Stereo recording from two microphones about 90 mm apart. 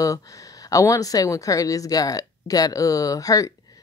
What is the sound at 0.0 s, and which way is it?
A woman's voice, 40° left (ahead or behind).